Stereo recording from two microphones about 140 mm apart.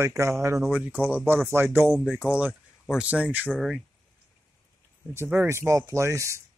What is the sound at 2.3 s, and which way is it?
Speech, 10° right (ahead or behind).